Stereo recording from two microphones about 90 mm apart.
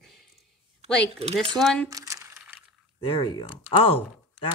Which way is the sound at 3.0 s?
65° left (ahead or behind).